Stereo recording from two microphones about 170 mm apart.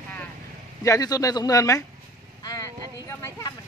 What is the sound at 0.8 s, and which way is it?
Speech, 20° left (ahead or behind).